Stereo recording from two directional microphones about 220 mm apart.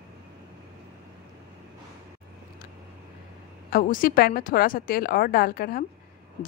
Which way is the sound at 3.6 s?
40° left (ahead or behind).